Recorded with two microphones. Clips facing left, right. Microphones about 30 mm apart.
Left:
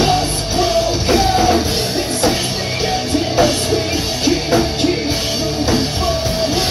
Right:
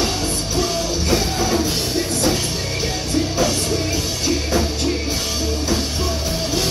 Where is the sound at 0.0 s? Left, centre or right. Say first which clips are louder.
Left 6 dB; left.